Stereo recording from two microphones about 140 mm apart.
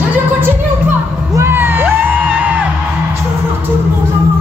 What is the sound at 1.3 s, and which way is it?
Music, 15° right (ahead or behind).